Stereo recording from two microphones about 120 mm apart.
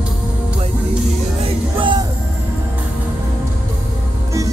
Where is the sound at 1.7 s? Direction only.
40° right (ahead or behind).